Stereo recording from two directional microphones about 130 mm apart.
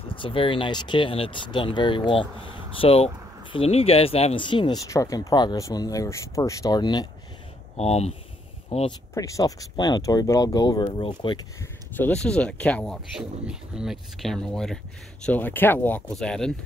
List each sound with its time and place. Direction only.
0.1 s speech: 40° left (ahead or behind)
7.7 s speech: 55° left (ahead or behind)
9.1 s speech: 25° left (ahead or behind)
10.8 s speech: 40° left (ahead or behind)
11.9 s speech: 10° left (ahead or behind)
13.5 s speech: 5° right (ahead or behind)